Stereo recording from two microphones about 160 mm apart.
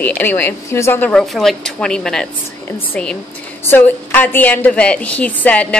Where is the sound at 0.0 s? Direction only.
10° left (ahead or behind).